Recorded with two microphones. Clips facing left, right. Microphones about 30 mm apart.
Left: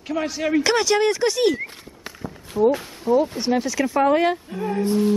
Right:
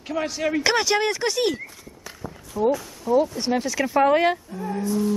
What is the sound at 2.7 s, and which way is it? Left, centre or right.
Speech, left.